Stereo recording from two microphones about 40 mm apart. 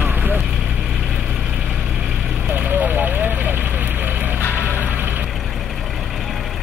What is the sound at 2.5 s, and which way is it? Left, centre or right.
Vehicle, right.